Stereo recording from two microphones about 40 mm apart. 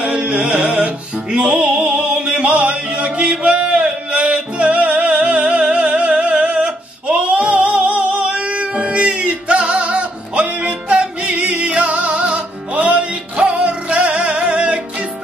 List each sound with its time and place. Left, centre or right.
0.0 s music: right